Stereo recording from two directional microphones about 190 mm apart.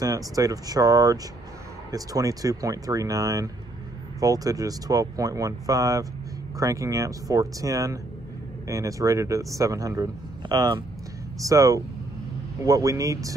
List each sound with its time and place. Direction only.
0.0 s speech: 20° right (ahead or behind)